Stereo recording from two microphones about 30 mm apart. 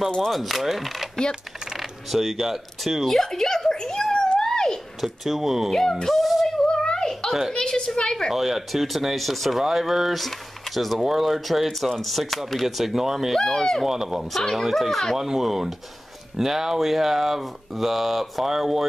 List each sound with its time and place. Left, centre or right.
0.4 s speech: centre
3.3 s a sound: centre
4.1 s a sound: left
5.0 s speech: centre
5.7 s speech: centre
6.2 s female singing: centre
6.5 s a sound: left
7.5 s a woman's voice: left
8.3 s speech: centre
9.6 s speech: centre
13.4 s speech: centre
13.8 s speech: centre
14.5 s speech: centre
15.1 s speech: centre